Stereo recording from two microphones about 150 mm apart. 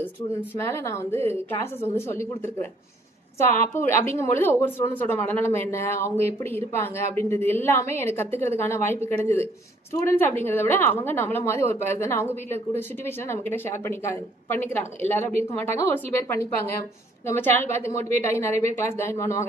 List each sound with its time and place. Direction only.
0.7 s a woman's voice: 20° left (ahead or behind)